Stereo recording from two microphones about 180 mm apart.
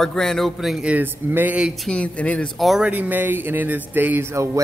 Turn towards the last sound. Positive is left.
turn(degrees=-15)  # may be behind; listen again after turning